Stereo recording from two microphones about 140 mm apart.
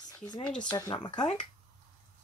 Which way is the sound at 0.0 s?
30° left (ahead or behind).